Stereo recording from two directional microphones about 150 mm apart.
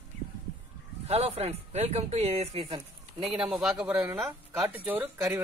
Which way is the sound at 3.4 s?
Centre (ahead or behind).